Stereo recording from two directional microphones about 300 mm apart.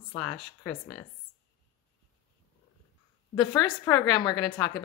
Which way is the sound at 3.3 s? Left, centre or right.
Centre.